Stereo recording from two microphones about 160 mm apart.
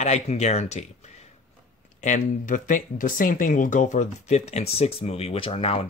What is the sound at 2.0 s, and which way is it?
Speech, 55° left (ahead or behind).